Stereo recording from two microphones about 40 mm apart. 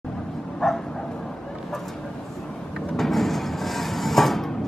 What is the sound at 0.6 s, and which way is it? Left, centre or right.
Bow-wow, centre.